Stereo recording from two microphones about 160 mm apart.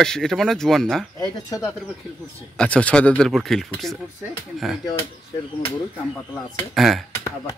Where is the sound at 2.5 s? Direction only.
10° left (ahead or behind).